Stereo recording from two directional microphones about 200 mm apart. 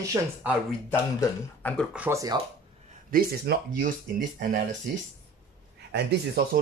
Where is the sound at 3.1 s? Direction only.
45° right (ahead or behind).